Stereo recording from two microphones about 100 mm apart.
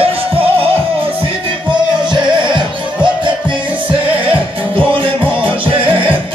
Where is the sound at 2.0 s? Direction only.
50° right (ahead or behind).